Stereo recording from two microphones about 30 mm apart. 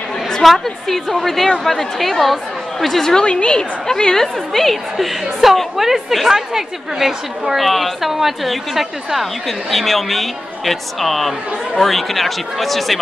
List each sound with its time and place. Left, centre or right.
0.4 s a woman's voice: centre
3.2 s a woman's voice: left
3.8 s a woman's voice: centre
4.9 s a woman's voice: centre
7.5 s speech: centre
8.1 s a woman's voice: centre